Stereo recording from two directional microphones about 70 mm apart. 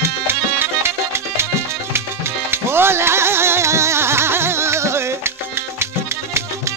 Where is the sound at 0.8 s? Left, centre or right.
Right.